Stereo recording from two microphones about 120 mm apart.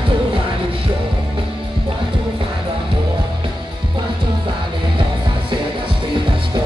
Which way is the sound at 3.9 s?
45° right (ahead or behind).